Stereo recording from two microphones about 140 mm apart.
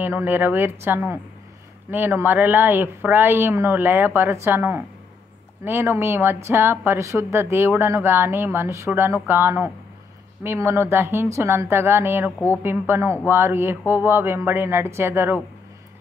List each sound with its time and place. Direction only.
0.0 s speech: 15° right (ahead or behind)